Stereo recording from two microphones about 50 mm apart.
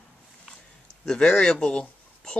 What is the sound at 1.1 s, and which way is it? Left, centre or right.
Speech, centre.